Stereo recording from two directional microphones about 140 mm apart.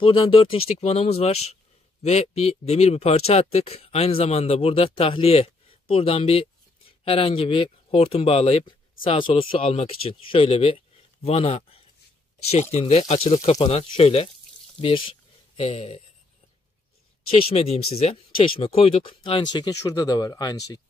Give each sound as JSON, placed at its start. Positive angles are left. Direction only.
{"t": 0.0, "sound": "speech", "side_deg": 40}
{"t": 17.3, "sound": "speech", "side_deg": 45}